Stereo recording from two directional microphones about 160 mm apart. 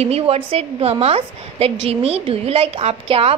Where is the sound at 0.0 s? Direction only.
40° right (ahead or behind).